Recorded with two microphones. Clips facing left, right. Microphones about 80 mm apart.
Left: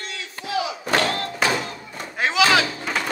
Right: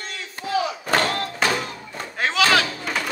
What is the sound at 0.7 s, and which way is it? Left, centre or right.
Crowd, centre.